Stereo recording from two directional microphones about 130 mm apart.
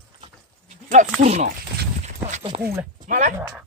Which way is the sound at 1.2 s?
60° right (ahead or behind).